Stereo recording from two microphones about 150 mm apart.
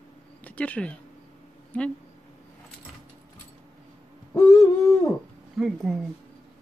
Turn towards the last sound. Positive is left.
turn(degrees=0)  # may be behind; listen again after turning